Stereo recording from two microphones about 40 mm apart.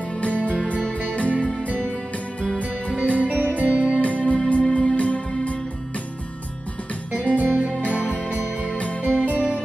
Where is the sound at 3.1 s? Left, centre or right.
Right.